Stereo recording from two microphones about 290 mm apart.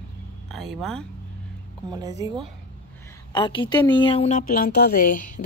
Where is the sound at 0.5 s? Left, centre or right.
Centre.